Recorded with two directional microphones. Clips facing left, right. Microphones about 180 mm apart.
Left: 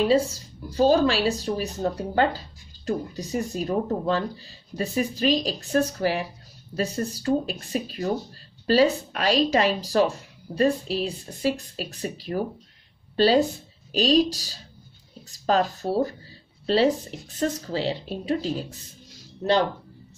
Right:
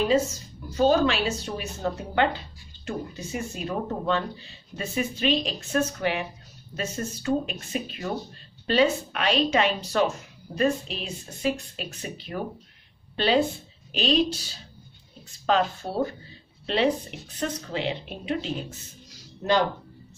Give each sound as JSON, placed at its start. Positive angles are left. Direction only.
{"t": 0.1, "sound": "a woman's voice", "side_deg": 35}